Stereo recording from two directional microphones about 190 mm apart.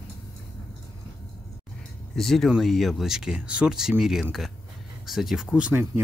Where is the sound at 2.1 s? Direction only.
Centre (ahead or behind).